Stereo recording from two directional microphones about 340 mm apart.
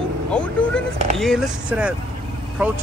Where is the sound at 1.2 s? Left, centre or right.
Centre.